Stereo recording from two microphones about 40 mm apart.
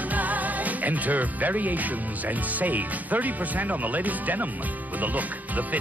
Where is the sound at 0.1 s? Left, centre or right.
Right.